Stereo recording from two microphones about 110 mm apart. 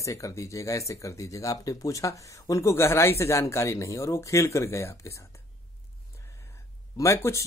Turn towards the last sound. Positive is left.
turn(degrees=30)  # may be behind; listen again after turning